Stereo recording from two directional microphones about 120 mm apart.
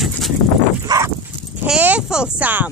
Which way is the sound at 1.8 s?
10° right (ahead or behind).